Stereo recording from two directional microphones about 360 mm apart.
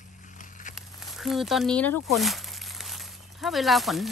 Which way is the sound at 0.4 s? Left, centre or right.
Left.